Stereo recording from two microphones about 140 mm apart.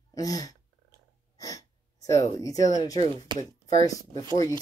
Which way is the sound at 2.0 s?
25° left (ahead or behind).